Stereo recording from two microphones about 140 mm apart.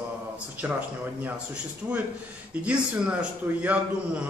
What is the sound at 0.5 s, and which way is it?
Speech, 10° right (ahead or behind).